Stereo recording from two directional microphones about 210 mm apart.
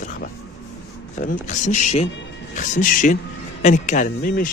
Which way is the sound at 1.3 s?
35° left (ahead or behind).